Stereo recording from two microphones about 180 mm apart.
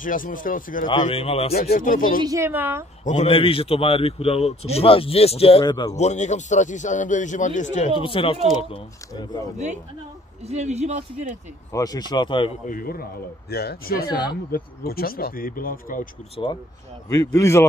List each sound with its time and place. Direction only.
0.0 s speech: 50° left (ahead or behind)
0.8 s a man's voice: 30° left (ahead or behind)
1.5 s speech: 55° left (ahead or behind)
2.2 s a woman's voice: 15° right (ahead or behind)
3.1 s a man's voice: 35° left (ahead or behind)
5.9 s speech: 40° left (ahead or behind)
8.0 s speech: 30° left (ahead or behind)
10.4 s a man's voice: 40° right (ahead or behind)
11.7 s speech: 20° left (ahead or behind)
12.6 s speech: 55° left (ahead or behind)
14.0 s speech: 25° left (ahead or behind)
14.3 s speech: 55° left (ahead or behind)
17.1 s a man's voice: 20° left (ahead or behind)